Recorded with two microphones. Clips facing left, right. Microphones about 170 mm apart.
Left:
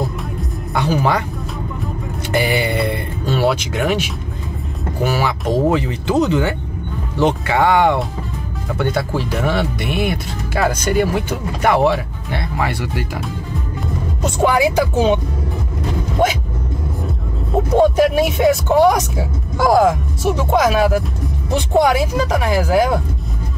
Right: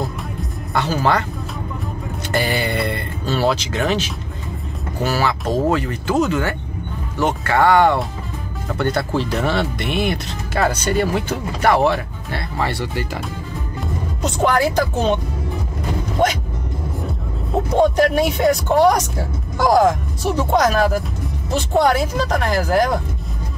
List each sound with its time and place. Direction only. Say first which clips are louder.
0.7 s speech: left 1 dB; 15° left (ahead or behind)
2.3 s speech: left 3 dB; 15° left (ahead or behind)
14.2 s speech: left 2 dB; 10° left (ahead or behind)
16.2 s speech: left 1 dB; centre (ahead or behind)
17.7 s speech: left 2 dB; 5° left (ahead or behind)